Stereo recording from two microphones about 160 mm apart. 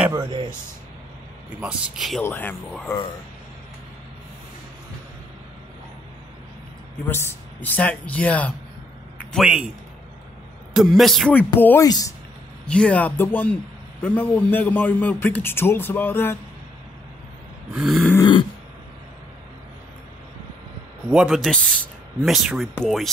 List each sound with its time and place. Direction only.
0.2 s speech: 30° right (ahead or behind)
1.6 s a man's voice: 5° right (ahead or behind)
2.2 s a man's voice: 10° left (ahead or behind)
2.7 s a man's voice: centre (ahead or behind)
7.1 s a man's voice: 15° left (ahead or behind)
9.4 s a man's voice: 5° right (ahead or behind)
10.7 s a man's voice: centre (ahead or behind)
17.7 s a man's voice: centre (ahead or behind)
18.1 s a sound: 25° left (ahead or behind)
21.1 s a man's voice: 5° right (ahead or behind)